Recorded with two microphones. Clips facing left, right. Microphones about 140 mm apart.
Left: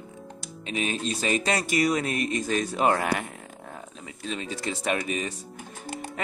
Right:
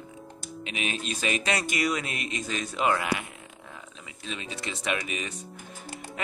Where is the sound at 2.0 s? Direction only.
45° left (ahead or behind).